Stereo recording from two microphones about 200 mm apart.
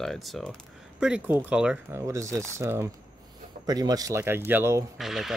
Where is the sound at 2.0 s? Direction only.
15° right (ahead or behind).